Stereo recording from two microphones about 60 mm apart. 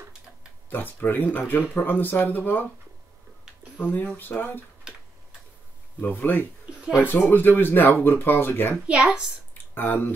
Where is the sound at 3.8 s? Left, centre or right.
Left.